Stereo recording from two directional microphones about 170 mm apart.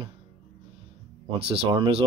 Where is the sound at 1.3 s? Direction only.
35° right (ahead or behind).